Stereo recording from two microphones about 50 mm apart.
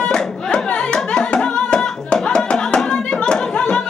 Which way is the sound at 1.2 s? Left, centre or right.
Centre.